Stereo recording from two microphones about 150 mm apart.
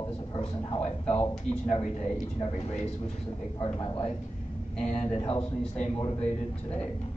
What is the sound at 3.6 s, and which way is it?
Speech, 35° left (ahead or behind).